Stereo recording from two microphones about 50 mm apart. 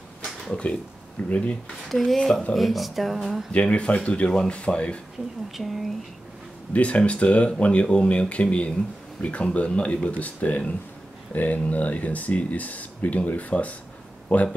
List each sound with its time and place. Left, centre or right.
0.5 s speech: left
1.9 s speech: centre
3.5 s speech: left
5.5 s speech: centre
6.7 s speech: left